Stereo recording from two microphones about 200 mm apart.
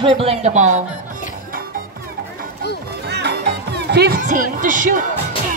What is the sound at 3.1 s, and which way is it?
Music, 55° right (ahead or behind).